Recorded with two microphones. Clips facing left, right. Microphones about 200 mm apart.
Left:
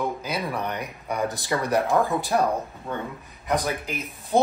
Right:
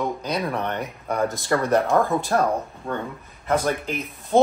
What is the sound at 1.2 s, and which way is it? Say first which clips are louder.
Speech: right 3 dB; 15° left (ahead or behind).